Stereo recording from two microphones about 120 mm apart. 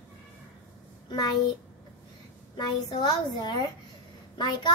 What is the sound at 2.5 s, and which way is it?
A child's voice, 40° left (ahead or behind).